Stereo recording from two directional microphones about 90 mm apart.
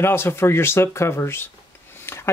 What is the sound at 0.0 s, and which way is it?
Speech, 25° left (ahead or behind).